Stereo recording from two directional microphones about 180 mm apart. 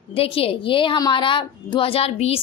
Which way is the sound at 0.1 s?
30° left (ahead or behind).